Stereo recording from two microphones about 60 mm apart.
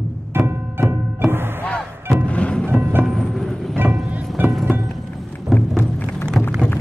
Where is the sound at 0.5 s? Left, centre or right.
Right.